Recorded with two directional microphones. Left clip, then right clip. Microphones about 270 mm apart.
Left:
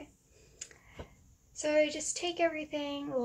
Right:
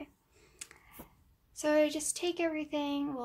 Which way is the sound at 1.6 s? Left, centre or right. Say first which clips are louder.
Even; right.